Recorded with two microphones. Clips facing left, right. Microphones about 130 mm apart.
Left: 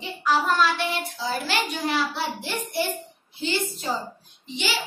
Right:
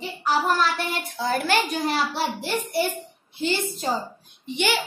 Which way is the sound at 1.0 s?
55° right (ahead or behind).